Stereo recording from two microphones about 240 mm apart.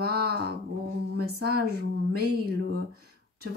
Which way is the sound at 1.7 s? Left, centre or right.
Right.